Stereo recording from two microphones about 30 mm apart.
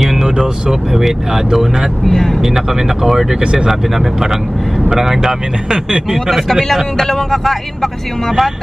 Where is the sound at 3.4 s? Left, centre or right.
Right.